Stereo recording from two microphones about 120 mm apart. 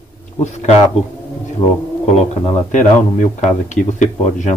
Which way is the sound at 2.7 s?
90° left.